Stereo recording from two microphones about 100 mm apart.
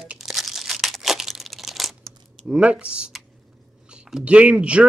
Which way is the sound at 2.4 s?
10° right (ahead or behind).